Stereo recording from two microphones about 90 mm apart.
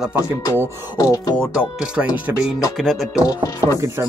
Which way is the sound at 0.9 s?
40° left (ahead or behind).